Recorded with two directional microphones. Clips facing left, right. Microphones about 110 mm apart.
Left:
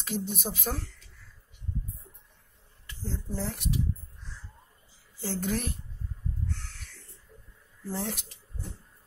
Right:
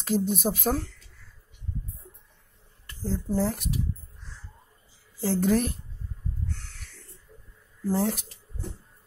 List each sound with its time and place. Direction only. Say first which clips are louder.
0.0 s speech: right 8 dB; 45° right (ahead or behind)
2.9 s speech: right 8 dB; 45° right (ahead or behind)
5.2 s speech: right 8 dB; 45° right (ahead or behind)
7.9 s speech: right 8 dB; 45° right (ahead or behind)